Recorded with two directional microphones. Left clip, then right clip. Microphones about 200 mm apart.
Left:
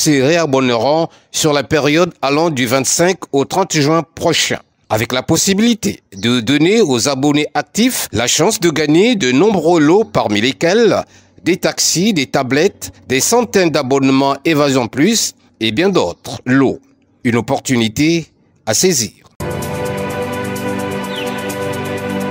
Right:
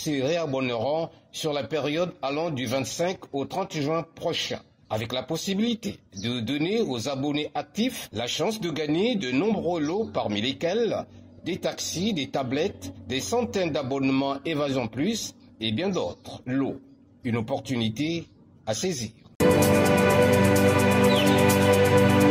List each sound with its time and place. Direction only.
0.0 s speech: 45° left (ahead or behind)
19.3 s music: centre (ahead or behind)